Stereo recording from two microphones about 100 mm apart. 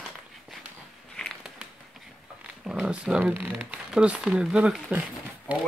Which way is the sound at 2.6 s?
5° right (ahead or behind).